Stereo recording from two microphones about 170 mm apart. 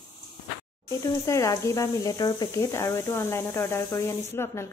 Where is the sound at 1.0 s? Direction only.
15° left (ahead or behind).